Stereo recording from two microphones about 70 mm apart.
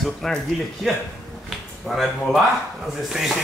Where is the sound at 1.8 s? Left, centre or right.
Centre.